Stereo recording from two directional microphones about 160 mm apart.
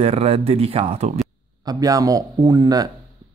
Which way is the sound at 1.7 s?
20° right (ahead or behind).